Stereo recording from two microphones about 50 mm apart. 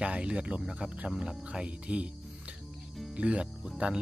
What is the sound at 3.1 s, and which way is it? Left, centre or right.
Speech, right.